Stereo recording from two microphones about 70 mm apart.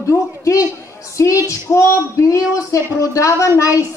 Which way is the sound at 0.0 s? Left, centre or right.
Left.